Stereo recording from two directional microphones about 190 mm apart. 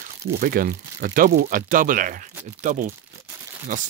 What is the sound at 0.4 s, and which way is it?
Speech, 50° right (ahead or behind).